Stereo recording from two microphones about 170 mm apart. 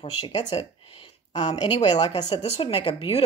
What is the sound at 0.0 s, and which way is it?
Speech, 30° left (ahead or behind).